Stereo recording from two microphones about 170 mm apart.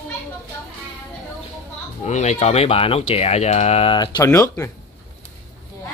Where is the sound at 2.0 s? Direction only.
45° left (ahead or behind); by 4.7 s 20° left (ahead or behind).